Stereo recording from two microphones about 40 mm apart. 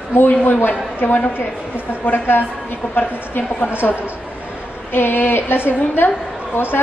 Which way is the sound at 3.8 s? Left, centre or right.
Left.